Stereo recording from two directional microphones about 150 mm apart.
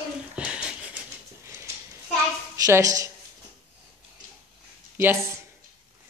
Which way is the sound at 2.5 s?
25° right (ahead or behind).